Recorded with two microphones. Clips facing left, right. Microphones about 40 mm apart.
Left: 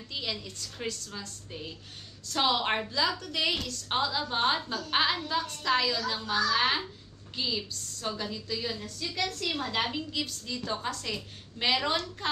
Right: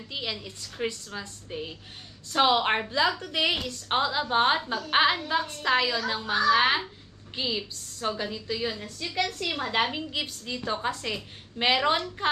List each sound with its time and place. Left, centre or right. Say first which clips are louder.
0.1 s a woman's voice: right 2 dB; centre